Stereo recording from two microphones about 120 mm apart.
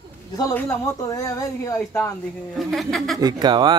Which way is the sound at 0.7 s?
30° left (ahead or behind).